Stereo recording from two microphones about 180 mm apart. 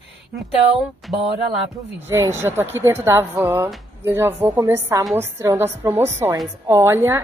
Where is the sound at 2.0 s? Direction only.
15° right (ahead or behind).